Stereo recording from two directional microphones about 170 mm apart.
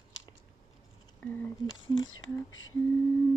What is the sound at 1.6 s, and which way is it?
Speech, 25° left (ahead or behind).